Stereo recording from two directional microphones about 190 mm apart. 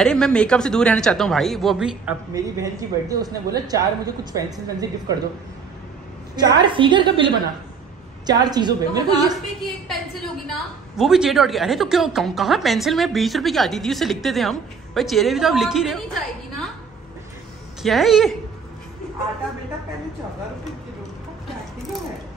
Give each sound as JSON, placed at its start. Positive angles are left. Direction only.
{"t": 0.0, "sound": "a woman's voice", "side_deg": 5}
{"t": 2.3, "sound": "speech", "side_deg": -15}
{"t": 6.3, "sound": "speech", "side_deg": -25}
{"t": 9.8, "sound": "a woman's voice", "side_deg": 0}
{"t": 17.8, "sound": "a woman's voice", "side_deg": 0}